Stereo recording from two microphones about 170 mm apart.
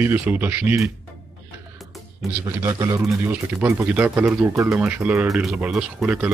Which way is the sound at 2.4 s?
20° right (ahead or behind).